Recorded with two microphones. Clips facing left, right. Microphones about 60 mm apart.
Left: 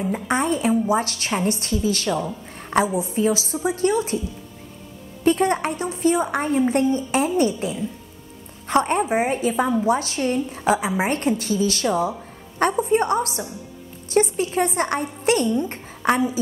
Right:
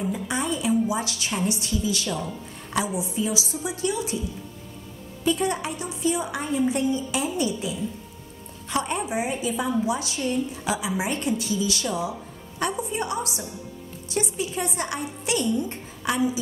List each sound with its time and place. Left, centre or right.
0.1 s a woman's voice: left
2.0 s a woman's voice: left
2.7 s a woman's voice: left
5.2 s a woman's voice: left